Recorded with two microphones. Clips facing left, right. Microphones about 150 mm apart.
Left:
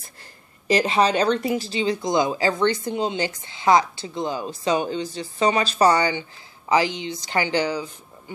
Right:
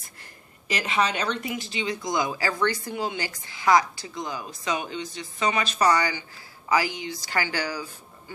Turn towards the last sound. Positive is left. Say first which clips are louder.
# left 6 dB
turn(degrees=20)  # may be behind; listen again after turning